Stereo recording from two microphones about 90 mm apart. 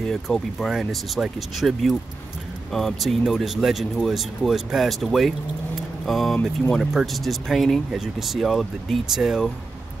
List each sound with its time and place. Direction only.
0.0 s speech: 5° left (ahead or behind)
5.8 s vehicle: centre (ahead or behind)
6.8 s speech: centre (ahead or behind)